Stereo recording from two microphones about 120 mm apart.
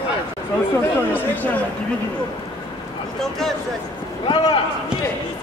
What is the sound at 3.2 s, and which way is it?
Speech, 5° left (ahead or behind).